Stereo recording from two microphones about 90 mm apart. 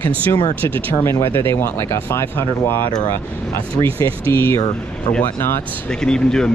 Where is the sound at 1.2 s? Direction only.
25° left (ahead or behind).